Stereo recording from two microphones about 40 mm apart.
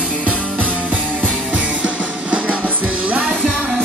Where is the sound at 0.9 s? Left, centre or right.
Right.